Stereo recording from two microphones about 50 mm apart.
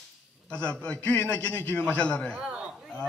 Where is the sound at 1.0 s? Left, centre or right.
Left.